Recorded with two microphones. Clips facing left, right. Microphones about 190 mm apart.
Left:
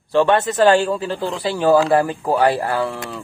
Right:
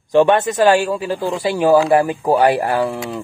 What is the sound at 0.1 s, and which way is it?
A man's voice, 15° right (ahead or behind).